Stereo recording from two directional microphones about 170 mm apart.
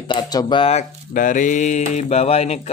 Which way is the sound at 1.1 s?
50° left (ahead or behind).